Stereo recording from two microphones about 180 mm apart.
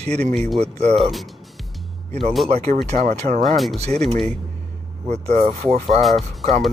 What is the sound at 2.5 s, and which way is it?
Speech, 35° right (ahead or behind).